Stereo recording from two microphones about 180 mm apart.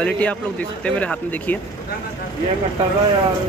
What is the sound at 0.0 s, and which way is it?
A man's voice, 10° left (ahead or behind).